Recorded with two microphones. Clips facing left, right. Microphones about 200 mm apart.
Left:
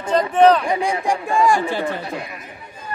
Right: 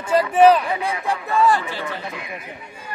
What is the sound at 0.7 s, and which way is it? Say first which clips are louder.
Speech: left 4 dB; 15° left (ahead or behind).